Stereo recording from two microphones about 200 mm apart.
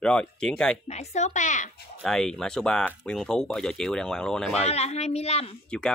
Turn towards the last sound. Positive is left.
turn(degrees=5)  # may be behind; listen again after turning